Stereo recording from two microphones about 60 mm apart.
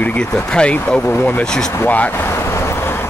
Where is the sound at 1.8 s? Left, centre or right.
Left.